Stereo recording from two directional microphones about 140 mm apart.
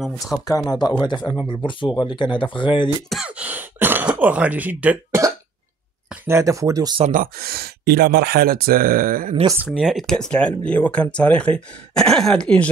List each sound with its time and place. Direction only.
0.5 s speech: 25° left (ahead or behind)
3.1 s throat clearing: 5° right (ahead or behind)
4.2 s speech: 10° right (ahead or behind)
6.2 s speech: 20° right (ahead or behind)
7.1 s speech: 80° right
9.7 s speech: centre (ahead or behind)